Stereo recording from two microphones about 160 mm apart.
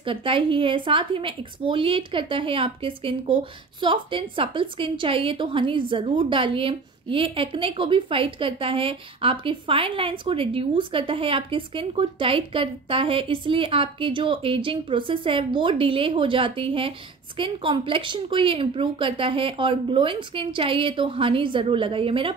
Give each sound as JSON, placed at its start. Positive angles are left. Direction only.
{"t": 0.0, "sound": "a woman's voice", "side_deg": -35}